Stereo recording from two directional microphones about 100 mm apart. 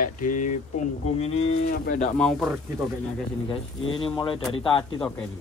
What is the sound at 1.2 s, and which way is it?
Moo, 90° left.